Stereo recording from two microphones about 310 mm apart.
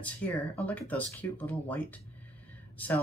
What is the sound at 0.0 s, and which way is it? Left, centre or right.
Speech, centre.